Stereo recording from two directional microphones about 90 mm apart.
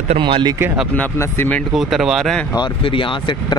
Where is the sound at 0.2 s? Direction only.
60° right (ahead or behind).